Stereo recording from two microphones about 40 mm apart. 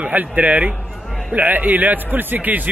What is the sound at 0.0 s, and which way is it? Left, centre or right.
A man's voice, right.